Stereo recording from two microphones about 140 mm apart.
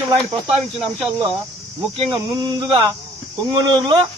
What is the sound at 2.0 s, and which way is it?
Speech, 35° right (ahead or behind).